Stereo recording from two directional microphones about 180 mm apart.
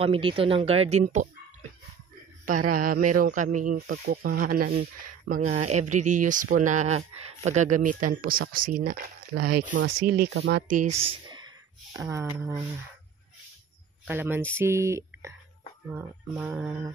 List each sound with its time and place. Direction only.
0.0 s speech: 30° right (ahead or behind)
2.4 s speech: 50° right (ahead or behind)
9.8 s speech: 90° right
10.1 s speech: 65° right (ahead or behind)
11.0 s speech: 30° right (ahead or behind)
11.9 s speech: 15° right (ahead or behind)
14.0 s speech: 10° right (ahead or behind)